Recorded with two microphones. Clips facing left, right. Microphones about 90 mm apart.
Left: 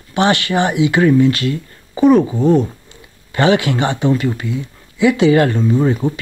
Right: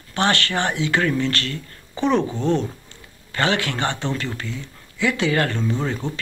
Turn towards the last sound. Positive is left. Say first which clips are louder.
# left 9 dB
turn(degrees=10)  # may be behind; listen again after turning